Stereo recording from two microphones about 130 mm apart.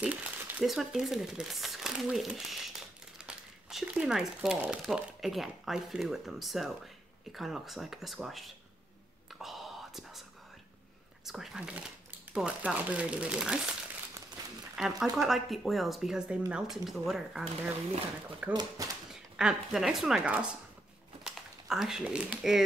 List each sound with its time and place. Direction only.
0.0 s a sound: 10° right (ahead or behind)
0.7 s speech: centre (ahead or behind)
9.3 s whispering: centre (ahead or behind)
11.2 s speech: 5° right (ahead or behind)
14.4 s a sound: 30° right (ahead or behind)
14.8 s speech: centre (ahead or behind)
18.5 s speech: 30° right (ahead or behind)
19.3 s speech: 5° right (ahead or behind)
21.2 s typing: 5° right (ahead or behind)